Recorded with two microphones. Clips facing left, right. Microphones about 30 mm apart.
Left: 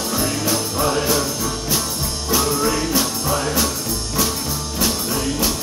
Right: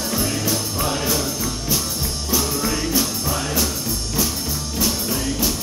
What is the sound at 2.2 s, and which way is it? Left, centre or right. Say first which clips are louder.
Music: left 4 dB; centre.